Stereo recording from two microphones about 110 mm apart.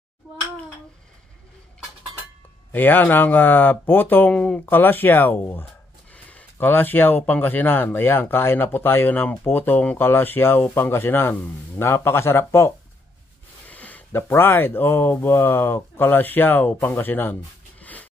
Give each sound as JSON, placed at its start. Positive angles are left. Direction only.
{"t": 2.7, "sound": "speech", "side_deg": 15}
{"t": 13.7, "sound": "a sound", "side_deg": 15}
{"t": 14.3, "sound": "speech", "side_deg": 25}